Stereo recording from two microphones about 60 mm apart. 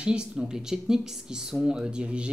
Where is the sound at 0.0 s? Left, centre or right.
Centre.